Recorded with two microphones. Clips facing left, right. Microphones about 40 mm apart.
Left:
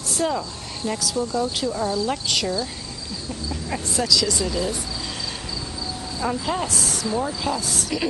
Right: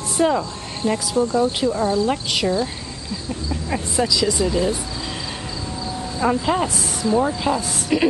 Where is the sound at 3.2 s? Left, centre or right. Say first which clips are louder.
Right 3 dB; centre.